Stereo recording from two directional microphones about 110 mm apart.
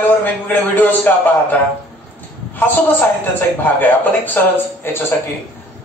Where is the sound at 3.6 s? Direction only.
15° left (ahead or behind).